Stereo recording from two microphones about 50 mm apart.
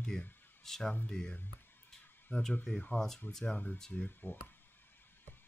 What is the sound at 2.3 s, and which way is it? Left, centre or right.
Speech, left.